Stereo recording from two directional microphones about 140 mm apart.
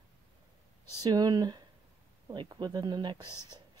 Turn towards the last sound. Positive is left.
turn(degrees=-35)  # may be behind; listen again after turning